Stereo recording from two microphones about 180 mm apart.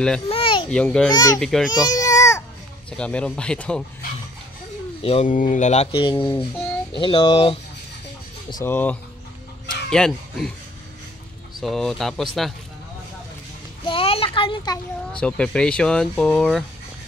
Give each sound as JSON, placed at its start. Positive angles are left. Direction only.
{"t": 0.3, "sound": "a sound", "side_deg": 30}
{"t": 0.7, "sound": "speech", "side_deg": 5}
{"t": 1.1, "sound": "speech", "side_deg": 20}
{"t": 1.4, "sound": "speech", "side_deg": 5}
{"t": 1.7, "sound": "baby cry", "side_deg": 25}
{"t": 2.9, "sound": "speech", "side_deg": 5}
{"t": 5.0, "sound": "speech", "side_deg": 40}
{"t": 5.9, "sound": "speech", "side_deg": 25}
{"t": 8.6, "sound": "speech", "side_deg": 10}
{"t": 11.6, "sound": "speech", "side_deg": 0}
{"t": 13.8, "sound": "a sound", "side_deg": 30}
{"t": 15.1, "sound": "speech", "side_deg": 5}